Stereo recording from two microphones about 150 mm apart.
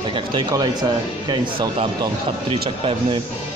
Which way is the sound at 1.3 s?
30° right (ahead or behind).